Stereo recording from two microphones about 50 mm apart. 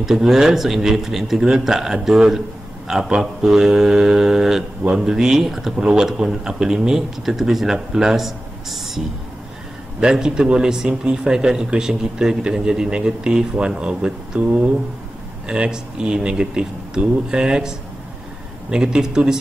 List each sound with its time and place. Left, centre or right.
0.0 s speech: centre
15.4 s speech: centre